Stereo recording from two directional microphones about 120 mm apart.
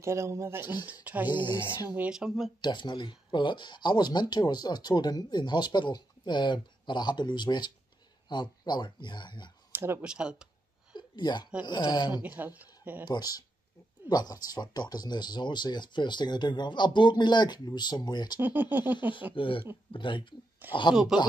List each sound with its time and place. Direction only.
0.0 s speech: 25° right (ahead or behind); by 2.5 s 5° right (ahead or behind)
2.6 s speech: 40° left (ahead or behind)
9.7 s a sound: 20° right (ahead or behind)
10.0 s speech: 5° right (ahead or behind)
10.9 s a sound: 40° left (ahead or behind)
11.6 s speech: 35° left (ahead or behind)
12.2 s speech: 15° right (ahead or behind)
13.0 s speech: 35° left (ahead or behind)
18.4 s speech: 15° right (ahead or behind)
19.3 s speech: 45° left (ahead or behind)
20.9 s speech: 5° right (ahead or behind)